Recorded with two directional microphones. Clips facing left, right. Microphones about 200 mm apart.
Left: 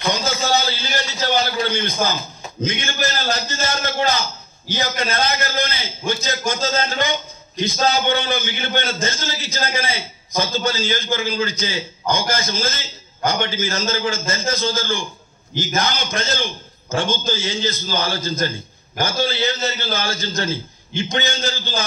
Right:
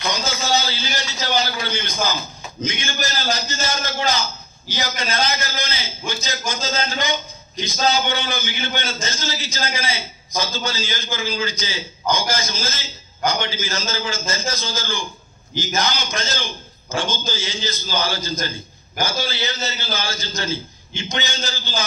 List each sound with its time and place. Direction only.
0.1 s a man's voice: 55° left (ahead or behind)